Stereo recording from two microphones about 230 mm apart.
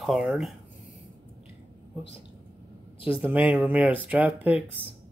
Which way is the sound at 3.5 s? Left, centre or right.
Centre.